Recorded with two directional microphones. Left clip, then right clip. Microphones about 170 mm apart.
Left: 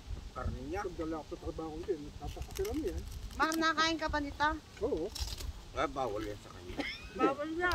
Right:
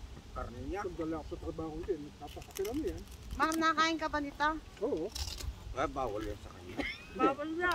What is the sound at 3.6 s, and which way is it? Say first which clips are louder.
Speech: right 2 dB; 5° left (ahead or behind).